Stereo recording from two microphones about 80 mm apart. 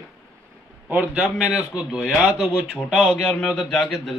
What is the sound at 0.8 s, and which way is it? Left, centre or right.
A man's voice, centre.